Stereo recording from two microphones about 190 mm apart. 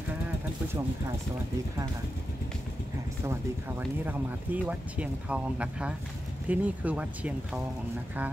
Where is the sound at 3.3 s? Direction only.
10° right (ahead or behind).